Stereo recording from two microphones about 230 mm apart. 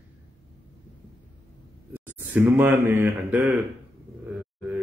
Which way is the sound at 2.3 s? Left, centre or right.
Centre.